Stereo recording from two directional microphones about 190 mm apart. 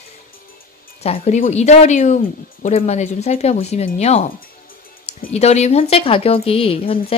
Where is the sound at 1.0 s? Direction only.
35° left (ahead or behind).